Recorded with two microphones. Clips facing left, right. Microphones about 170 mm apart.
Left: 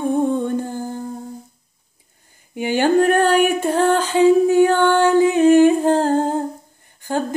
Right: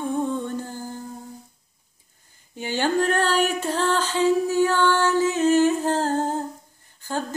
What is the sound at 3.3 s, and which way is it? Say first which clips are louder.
Female singing: left 7 dB; 15° left (ahead or behind).